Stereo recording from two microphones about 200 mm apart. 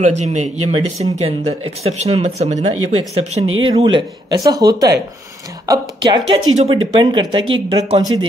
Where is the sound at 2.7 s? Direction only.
90° right.